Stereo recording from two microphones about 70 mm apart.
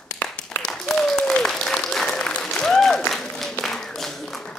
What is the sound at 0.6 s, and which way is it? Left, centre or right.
Applause, centre.